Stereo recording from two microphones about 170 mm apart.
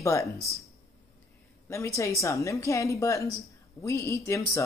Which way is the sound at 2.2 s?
20° left (ahead or behind).